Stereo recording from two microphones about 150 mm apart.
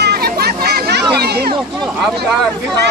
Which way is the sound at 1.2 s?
90° right.